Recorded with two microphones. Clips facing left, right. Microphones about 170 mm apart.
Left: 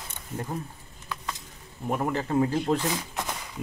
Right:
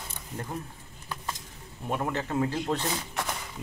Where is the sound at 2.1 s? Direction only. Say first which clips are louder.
Left 4 dB; 25° left (ahead or behind).